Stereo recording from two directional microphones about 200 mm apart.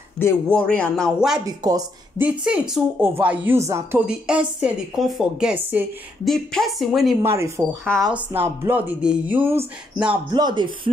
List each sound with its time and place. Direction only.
0.2 s a man's voice: 5° left (ahead or behind)
1.4 s a woman's voice: 20° right (ahead or behind)
2.2 s a woman's voice: 5° right (ahead or behind)
7.2 s a woman's voice: 15° right (ahead or behind)
10.3 s speech: 20° right (ahead or behind)